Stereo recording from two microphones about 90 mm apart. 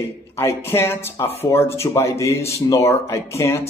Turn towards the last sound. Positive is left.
turn(degrees=30)  # may be behind; listen again after turning